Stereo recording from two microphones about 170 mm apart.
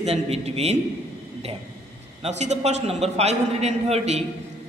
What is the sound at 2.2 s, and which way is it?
A man's voice, 40° right (ahead or behind).